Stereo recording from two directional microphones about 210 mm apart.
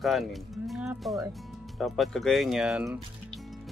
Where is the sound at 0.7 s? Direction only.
Centre (ahead or behind).